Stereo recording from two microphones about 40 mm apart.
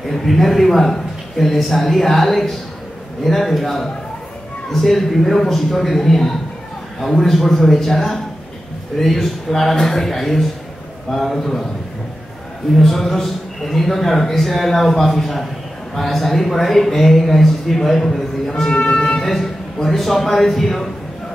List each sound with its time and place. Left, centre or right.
0.1 s a man's voice: centre
12.7 s a man's voice: centre